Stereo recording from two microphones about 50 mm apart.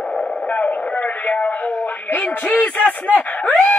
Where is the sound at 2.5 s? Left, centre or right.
Left.